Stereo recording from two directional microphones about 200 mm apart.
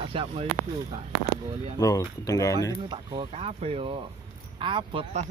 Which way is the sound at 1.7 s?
15° left (ahead or behind).